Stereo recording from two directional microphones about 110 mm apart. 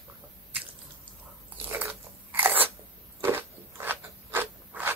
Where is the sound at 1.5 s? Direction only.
15° right (ahead or behind).